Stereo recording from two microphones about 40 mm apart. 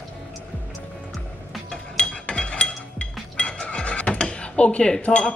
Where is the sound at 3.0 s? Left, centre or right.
Left.